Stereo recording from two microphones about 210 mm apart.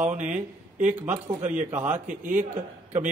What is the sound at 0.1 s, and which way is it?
Speech, 35° right (ahead or behind).